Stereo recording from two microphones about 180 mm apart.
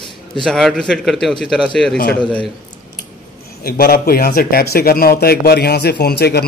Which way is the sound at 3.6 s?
55° left (ahead or behind).